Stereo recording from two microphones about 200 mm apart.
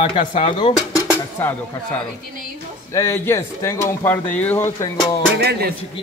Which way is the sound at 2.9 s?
15° left (ahead or behind).